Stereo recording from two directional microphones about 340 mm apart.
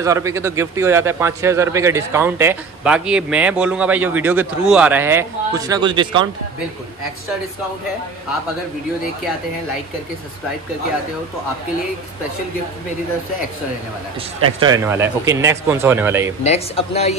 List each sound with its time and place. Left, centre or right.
0.0 s a man's voice: centre
14.6 s a man's voice: centre
16.4 s speech: centre